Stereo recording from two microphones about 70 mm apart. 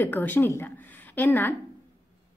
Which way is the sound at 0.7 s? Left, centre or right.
Left.